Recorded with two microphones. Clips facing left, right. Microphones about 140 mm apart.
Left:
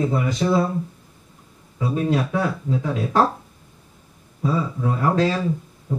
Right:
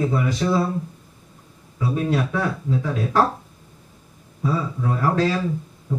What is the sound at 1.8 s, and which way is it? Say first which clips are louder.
Speech: left 1 dB; 25° left (ahead or behind).